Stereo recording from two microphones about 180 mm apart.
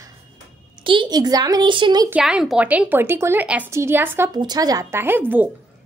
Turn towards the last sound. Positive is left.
turn(degrees=-10)  # may be behind; listen again after turning